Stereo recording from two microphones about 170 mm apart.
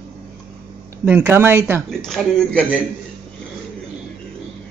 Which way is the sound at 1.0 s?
10° right (ahead or behind).